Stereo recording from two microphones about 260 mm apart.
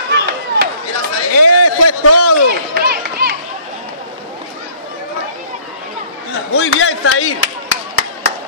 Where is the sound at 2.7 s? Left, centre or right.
Right.